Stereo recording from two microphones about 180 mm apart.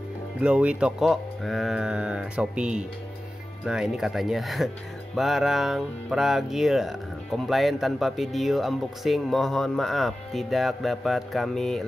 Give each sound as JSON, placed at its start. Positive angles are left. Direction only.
{"t": 0.4, "sound": "speech", "side_deg": -5}